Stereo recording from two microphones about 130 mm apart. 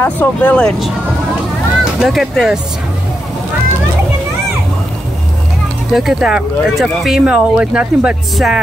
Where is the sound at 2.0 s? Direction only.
Centre (ahead or behind).